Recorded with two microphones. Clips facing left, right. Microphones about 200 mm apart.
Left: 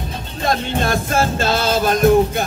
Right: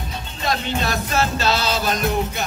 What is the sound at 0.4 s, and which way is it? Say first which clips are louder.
Music: left 4 dB; 50° left (ahead or behind).